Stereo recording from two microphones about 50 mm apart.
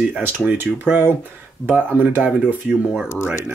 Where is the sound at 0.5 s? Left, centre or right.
Right.